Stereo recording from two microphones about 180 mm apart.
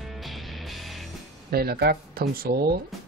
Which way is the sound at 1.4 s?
60° right (ahead or behind).